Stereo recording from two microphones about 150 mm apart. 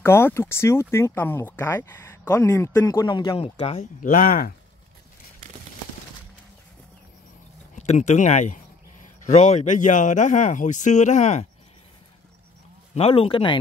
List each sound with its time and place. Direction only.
0.0 s speech: 15° left (ahead or behind); by 3.8 s 45° left (ahead or behind)
4.0 s speech: 65° left (ahead or behind)
7.7 s speech: 50° left (ahead or behind)
12.9 s speech: 40° left (ahead or behind)